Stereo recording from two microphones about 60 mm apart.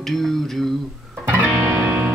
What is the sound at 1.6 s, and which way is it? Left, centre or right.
Music, right.